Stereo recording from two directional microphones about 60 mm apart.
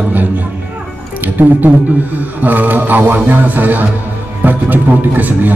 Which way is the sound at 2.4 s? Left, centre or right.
Right.